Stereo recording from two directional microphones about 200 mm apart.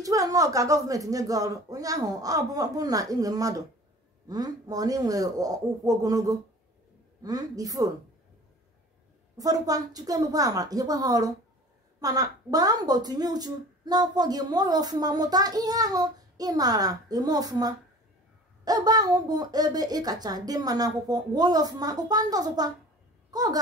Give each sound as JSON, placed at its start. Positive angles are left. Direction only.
{"t": 0.0, "sound": "speech", "side_deg": -15}
{"t": 9.4, "sound": "a woman's voice", "side_deg": -20}